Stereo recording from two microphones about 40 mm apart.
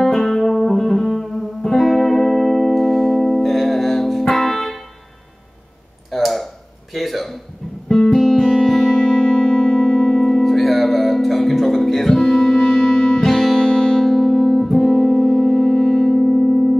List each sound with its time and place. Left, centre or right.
0.0 s music: centre
6.0 s a sound: centre
7.9 s music: centre
8.2 s music: centre
14.0 s music: centre